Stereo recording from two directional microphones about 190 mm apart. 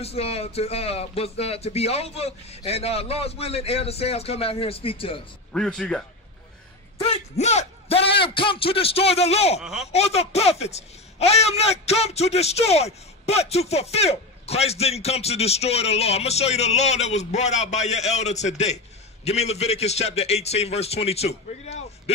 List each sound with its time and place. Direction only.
0.0 s a man's voice: 30° left (ahead or behind)
5.5 s speech: 5° left (ahead or behind)
7.0 s a man's voice: 35° left (ahead or behind)
9.6 s speech: centre (ahead or behind)
9.9 s a man's voice: 35° left (ahead or behind)